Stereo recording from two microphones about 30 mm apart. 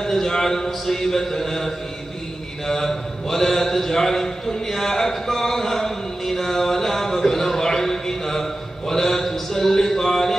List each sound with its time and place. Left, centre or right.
0.0 s a man's voice: centre
0.8 s mantra: centre
2.6 s a sound: centre